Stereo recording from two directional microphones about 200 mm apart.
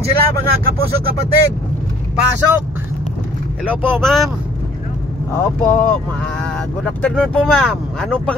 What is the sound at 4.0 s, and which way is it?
Speech, centre (ahead or behind).